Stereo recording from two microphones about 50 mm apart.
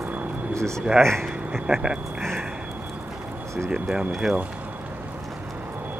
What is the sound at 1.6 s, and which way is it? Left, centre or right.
Speech, centre.